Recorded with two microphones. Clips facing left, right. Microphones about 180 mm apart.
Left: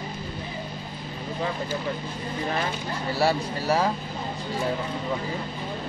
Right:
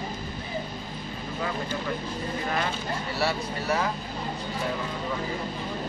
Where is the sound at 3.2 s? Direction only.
30° left (ahead or behind).